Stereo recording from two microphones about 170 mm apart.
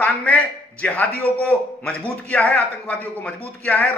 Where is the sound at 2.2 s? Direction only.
10° left (ahead or behind).